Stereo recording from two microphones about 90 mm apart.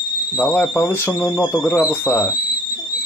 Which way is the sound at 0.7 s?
30° left (ahead or behind).